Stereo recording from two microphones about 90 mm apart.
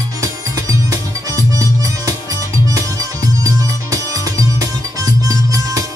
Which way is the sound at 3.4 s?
40° right (ahead or behind).